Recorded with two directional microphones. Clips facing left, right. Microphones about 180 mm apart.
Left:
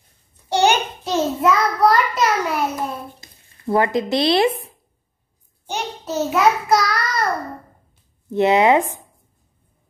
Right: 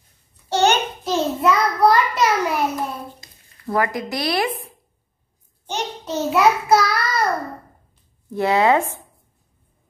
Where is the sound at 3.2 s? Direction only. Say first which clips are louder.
Even; 25° left (ahead or behind).